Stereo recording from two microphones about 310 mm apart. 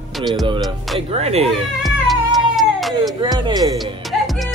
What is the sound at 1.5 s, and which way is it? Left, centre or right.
Cat, centre.